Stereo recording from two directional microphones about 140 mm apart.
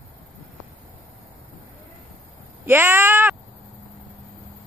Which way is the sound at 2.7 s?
15° right (ahead or behind).